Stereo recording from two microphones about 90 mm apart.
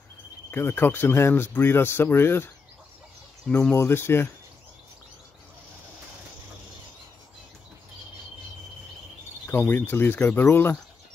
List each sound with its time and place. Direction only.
0.5 s speech: 25° left (ahead or behind)
3.4 s speech: 10° left (ahead or behind)
3.7 s speech: 25° left (ahead or behind)
9.5 s speech: 20° left (ahead or behind)